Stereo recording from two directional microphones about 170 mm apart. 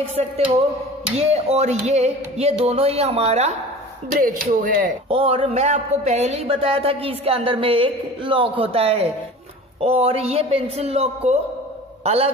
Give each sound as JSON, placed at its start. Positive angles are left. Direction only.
{"t": 0.2, "sound": "speech", "side_deg": -40}
{"t": 4.2, "sound": "speech", "side_deg": -55}
{"t": 5.0, "sound": "a man's voice", "side_deg": -35}